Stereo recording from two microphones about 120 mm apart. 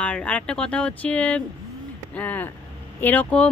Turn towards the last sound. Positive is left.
turn(degrees=10)  # may be behind; listen again after turning